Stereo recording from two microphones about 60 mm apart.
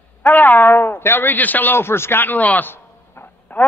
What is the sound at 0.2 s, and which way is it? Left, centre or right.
Speech, left.